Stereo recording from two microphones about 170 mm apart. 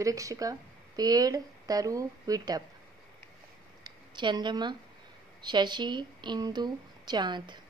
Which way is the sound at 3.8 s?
25° right (ahead or behind).